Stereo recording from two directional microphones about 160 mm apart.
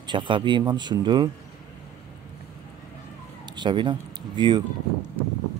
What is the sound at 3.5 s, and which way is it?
Speech, 30° right (ahead or behind).